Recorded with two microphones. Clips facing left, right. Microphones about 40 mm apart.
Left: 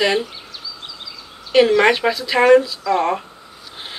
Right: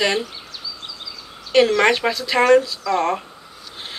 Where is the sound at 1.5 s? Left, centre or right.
Centre.